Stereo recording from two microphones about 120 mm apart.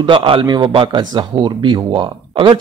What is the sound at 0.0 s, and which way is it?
A man's voice, 45° right (ahead or behind).